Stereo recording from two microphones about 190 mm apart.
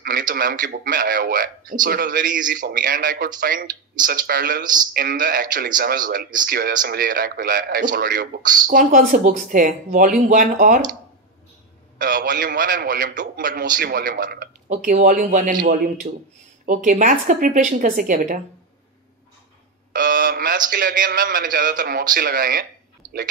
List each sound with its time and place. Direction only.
0.0 s a man's voice: 50° right (ahead or behind)
12.0 s a man's voice: 50° right (ahead or behind)
14.7 s a man's voice: 40° right (ahead or behind)
19.9 s a man's voice: 50° right (ahead or behind)